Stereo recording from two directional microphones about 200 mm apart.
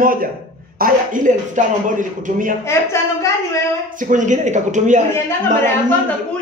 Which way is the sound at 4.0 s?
40° right (ahead or behind).